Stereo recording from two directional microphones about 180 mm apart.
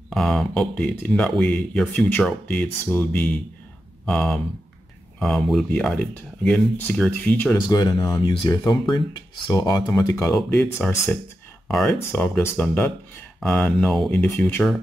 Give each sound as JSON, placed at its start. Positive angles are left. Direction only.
{"t": 0.1, "sound": "speech", "side_deg": 0}
{"t": 7.7, "sound": "speech", "side_deg": 25}
{"t": 10.3, "sound": "speech", "side_deg": 5}
{"t": 11.6, "sound": "a sound", "side_deg": 0}
{"t": 12.1, "sound": "speech", "side_deg": 10}